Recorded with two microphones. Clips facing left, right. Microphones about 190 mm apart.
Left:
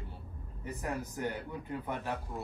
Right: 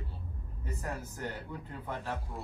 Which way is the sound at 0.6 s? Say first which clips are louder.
Left 2 dB; 15° left (ahead or behind).